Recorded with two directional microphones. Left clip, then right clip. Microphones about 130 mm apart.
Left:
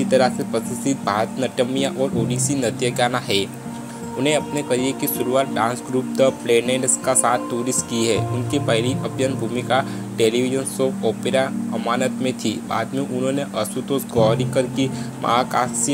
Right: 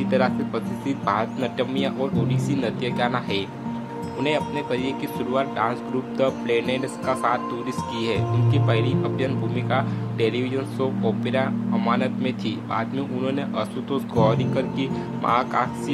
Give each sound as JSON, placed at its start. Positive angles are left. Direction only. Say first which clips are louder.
{"t": 0.1, "sound": "speech", "louder": "left 5 dB", "side_deg": 25}